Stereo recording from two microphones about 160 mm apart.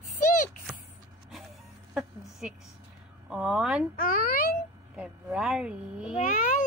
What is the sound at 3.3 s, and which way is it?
Speech, 5° right (ahead or behind).